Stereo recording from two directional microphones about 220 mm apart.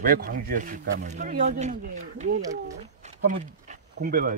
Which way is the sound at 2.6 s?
35° right (ahead or behind).